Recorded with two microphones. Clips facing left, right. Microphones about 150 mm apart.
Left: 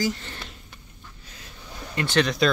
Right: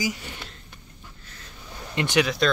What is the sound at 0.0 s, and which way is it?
Speech, 10° right (ahead or behind).